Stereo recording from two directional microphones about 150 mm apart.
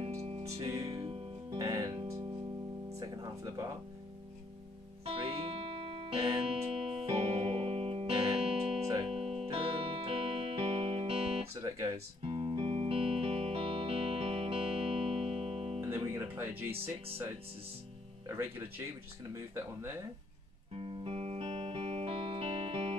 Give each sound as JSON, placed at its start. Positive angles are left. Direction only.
{"t": 0.0, "sound": "music", "side_deg": -45}
{"t": 0.6, "sound": "music", "side_deg": -20}
{"t": 1.0, "sound": "music", "side_deg": -40}
{"t": 1.6, "sound": "music", "side_deg": -25}
{"t": 5.0, "sound": "music", "side_deg": -40}
{"t": 9.0, "sound": "music", "side_deg": 0}
{"t": 9.5, "sound": "music", "side_deg": -40}
{"t": 11.6, "sound": "music", "side_deg": -20}
{"t": 12.2, "sound": "music", "side_deg": -35}
{"t": 15.8, "sound": "music", "side_deg": -15}
{"t": 20.7, "sound": "music", "side_deg": -35}